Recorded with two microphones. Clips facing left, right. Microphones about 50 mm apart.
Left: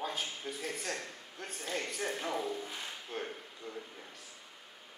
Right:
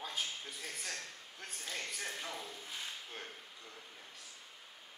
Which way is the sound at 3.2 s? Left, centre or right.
Left.